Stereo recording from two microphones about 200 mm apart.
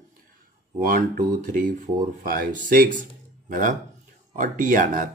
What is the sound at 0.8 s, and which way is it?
Speech, 45° right (ahead or behind).